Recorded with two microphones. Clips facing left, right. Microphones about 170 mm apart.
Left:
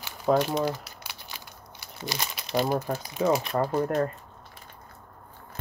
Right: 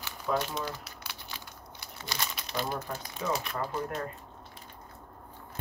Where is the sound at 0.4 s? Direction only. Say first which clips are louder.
Left 9 dB; 80° left.